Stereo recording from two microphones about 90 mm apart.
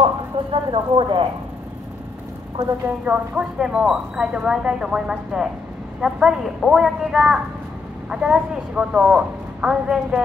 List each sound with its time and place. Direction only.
0.0 s speech: 65° right (ahead or behind)
3.1 s speech: 10° right (ahead or behind)